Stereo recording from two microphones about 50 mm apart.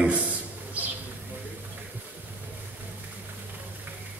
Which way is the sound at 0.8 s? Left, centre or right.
Right.